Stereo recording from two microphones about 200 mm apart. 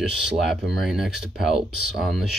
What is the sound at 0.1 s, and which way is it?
Speech, centre (ahead or behind).